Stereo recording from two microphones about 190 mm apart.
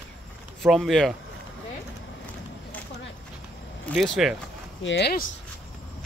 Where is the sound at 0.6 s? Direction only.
Centre (ahead or behind).